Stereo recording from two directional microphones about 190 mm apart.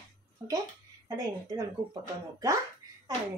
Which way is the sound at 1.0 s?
15° right (ahead or behind).